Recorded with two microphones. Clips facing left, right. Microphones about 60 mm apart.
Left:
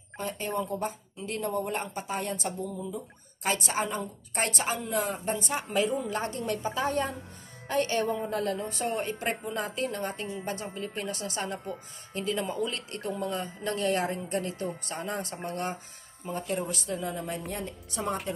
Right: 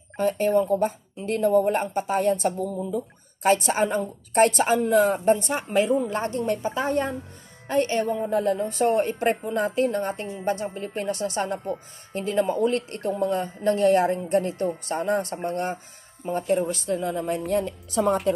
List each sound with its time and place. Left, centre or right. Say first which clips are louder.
0.2 s a woman's voice: right 11 dB; right
17.5 s a woman's voice: right 11 dB; right